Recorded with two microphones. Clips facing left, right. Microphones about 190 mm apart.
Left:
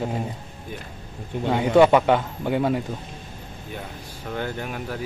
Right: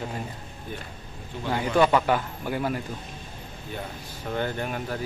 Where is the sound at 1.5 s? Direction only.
25° left (ahead or behind).